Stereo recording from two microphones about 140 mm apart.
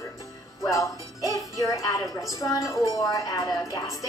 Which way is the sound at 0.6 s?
20° left (ahead or behind).